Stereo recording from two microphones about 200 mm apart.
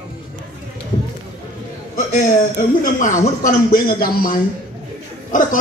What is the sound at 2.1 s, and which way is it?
A man's voice, 40° left (ahead or behind).